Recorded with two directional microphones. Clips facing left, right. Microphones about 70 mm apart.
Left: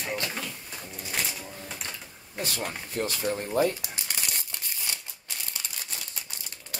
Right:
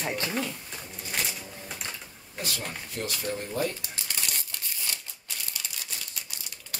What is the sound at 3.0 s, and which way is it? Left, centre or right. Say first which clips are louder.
Speech: left 5 dB; left.